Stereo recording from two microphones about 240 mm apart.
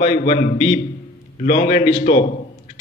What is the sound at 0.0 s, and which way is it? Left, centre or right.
Speech, left.